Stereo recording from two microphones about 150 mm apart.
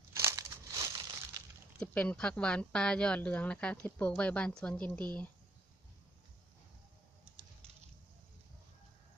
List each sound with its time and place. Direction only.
0.1 s crumpling: 20° right (ahead or behind)
1.8 s speech: 5° left (ahead or behind)